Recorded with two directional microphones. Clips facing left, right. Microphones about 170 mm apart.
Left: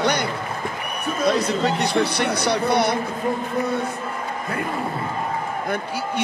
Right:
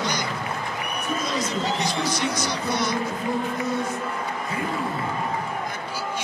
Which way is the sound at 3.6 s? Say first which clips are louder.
Left 3 dB; 60° left (ahead or behind).